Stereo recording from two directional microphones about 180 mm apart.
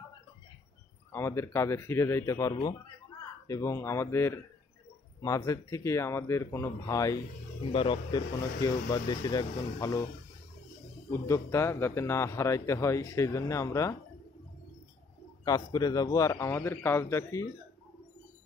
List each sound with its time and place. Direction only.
1.1 s a man's voice: 15° left (ahead or behind)
7.7 s speech: 30° left (ahead or behind)
11.1 s a man's voice: 15° left (ahead or behind)
15.4 s a man's voice: 20° left (ahead or behind)